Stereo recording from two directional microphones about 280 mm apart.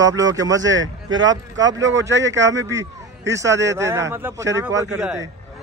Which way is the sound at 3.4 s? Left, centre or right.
Right.